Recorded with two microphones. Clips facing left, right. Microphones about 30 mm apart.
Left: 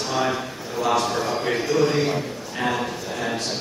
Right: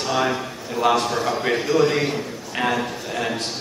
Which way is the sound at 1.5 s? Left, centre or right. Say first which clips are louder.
Right 2 dB; right.